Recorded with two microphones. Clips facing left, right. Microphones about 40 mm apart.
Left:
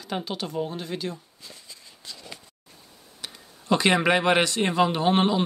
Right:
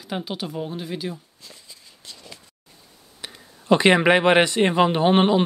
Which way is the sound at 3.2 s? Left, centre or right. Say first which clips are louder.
Right 5 dB; right.